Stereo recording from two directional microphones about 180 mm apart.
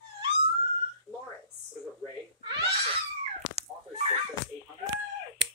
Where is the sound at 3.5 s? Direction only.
35° right (ahead or behind).